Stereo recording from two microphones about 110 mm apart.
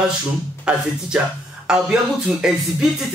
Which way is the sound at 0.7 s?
10° right (ahead or behind).